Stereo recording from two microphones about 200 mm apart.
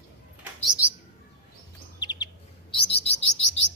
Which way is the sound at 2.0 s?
20° left (ahead or behind).